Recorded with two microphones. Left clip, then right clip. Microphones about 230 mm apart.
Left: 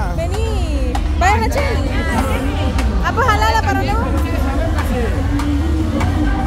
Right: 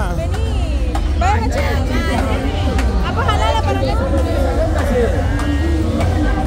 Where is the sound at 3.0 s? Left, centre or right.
Centre.